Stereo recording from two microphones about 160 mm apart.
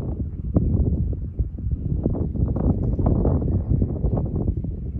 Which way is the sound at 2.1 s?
15° left (ahead or behind).